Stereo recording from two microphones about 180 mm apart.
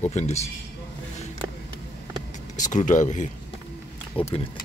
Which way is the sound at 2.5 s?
45° left (ahead or behind).